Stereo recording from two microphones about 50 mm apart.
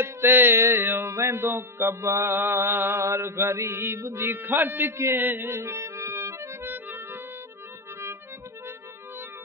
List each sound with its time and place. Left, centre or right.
0.0 s mantra: right
0.6 s a sound: right
0.8 s mantra: right
2.3 s speech: right
3.0 s mantra: right
4.0 s speech: right
5.6 s music: right
6.7 s music: right